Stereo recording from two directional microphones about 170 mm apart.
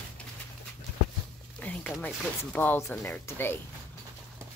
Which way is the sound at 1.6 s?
10° left (ahead or behind).